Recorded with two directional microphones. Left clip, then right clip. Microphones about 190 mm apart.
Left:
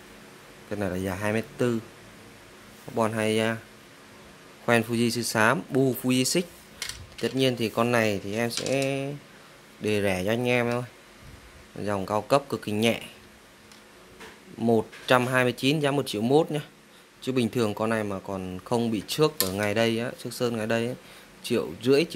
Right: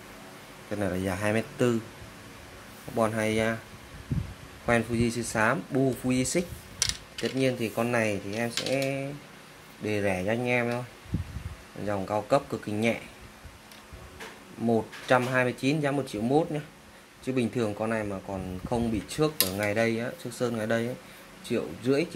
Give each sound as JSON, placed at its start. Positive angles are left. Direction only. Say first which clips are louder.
{"t": 0.7, "sound": "speech", "louder": "even", "side_deg": 20}
{"t": 3.0, "sound": "speech", "louder": "left 1 dB", "side_deg": 20}
{"t": 4.6, "sound": "speech", "louder": "left 3 dB", "side_deg": 30}
{"t": 8.6, "sound": "speech", "louder": "left 2 dB", "side_deg": 45}
{"t": 9.8, "sound": "speech", "louder": "left 2 dB", "side_deg": 30}
{"t": 11.8, "sound": "speech", "louder": "left 2 dB", "side_deg": 30}
{"t": 14.7, "sound": "speech", "louder": "left 2 dB", "side_deg": 30}